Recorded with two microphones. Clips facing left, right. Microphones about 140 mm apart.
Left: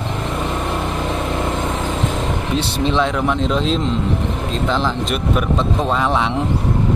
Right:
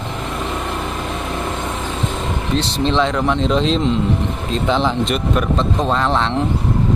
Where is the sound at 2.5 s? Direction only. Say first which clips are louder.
Right 1 dB; 10° left (ahead or behind).